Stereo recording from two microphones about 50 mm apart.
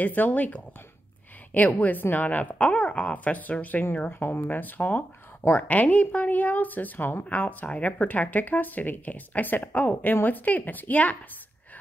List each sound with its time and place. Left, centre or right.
0.0 s speech: left
1.8 s speech: left
4.1 s speech: left
7.2 s speech: left